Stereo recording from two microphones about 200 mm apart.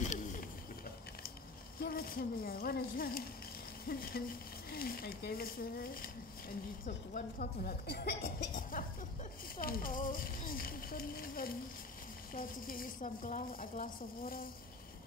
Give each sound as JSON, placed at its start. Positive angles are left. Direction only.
{"t": 0.0, "sound": "a sound", "side_deg": 40}
{"t": 1.8, "sound": "speech", "side_deg": 50}
{"t": 7.2, "sound": "speech", "side_deg": 45}